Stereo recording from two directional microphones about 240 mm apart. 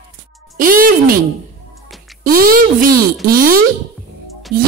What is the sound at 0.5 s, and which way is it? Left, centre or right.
Speech, right.